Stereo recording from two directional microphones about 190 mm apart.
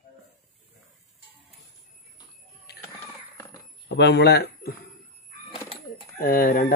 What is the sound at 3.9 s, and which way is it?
Speech, 65° left (ahead or behind).